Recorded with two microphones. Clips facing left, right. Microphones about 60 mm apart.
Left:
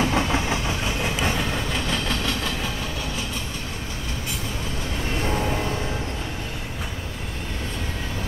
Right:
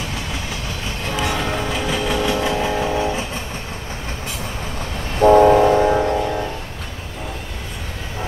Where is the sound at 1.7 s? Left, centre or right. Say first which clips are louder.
Right 5 dB; centre.